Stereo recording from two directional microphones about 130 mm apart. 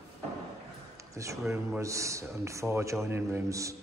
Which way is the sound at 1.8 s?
25° right (ahead or behind).